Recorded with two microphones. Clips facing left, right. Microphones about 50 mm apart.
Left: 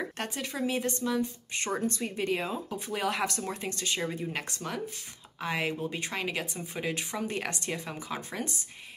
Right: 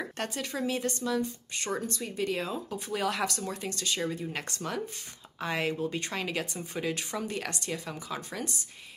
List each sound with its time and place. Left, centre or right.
0.0 s speech: centre
4.3 s speech: centre